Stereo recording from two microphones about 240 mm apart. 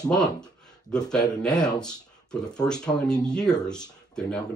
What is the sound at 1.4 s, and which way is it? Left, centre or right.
Speech, centre.